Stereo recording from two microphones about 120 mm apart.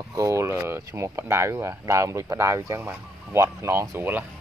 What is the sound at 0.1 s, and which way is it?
Speech, 25° right (ahead or behind).